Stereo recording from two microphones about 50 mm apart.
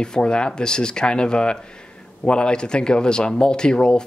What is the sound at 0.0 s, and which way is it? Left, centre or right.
Speech, centre.